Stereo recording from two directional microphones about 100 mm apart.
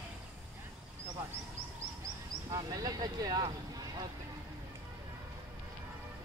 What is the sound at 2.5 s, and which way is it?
Speech, 40° right (ahead or behind).